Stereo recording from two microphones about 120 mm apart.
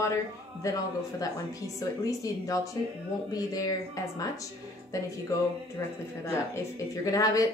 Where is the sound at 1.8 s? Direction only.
30° left (ahead or behind).